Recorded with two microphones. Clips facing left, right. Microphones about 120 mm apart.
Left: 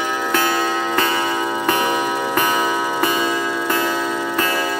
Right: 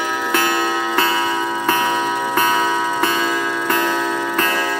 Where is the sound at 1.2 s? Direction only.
10° left (ahead or behind).